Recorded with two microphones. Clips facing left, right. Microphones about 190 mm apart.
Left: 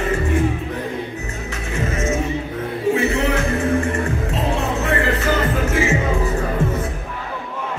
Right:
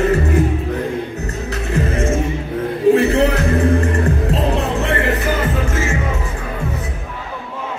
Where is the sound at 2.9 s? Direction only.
35° right (ahead or behind).